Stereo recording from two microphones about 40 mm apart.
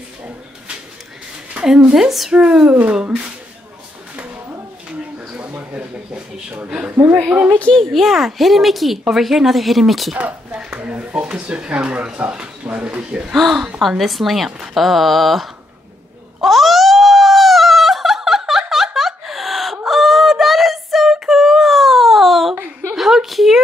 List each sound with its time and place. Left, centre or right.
1.6 s speech: right
2.0 s speech: centre
2.3 s speech: right
7.7 s speech: centre
10.1 s speech: right
10.6 s a sound: right
10.9 s speech: right
13.3 s speech: centre
16.3 s a sound: centre
18.5 s fowl: centre
22.9 s a sound: centre